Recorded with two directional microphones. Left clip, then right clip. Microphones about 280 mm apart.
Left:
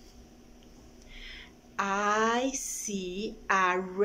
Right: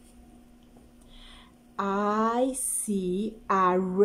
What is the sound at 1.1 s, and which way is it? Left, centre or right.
Speech, centre.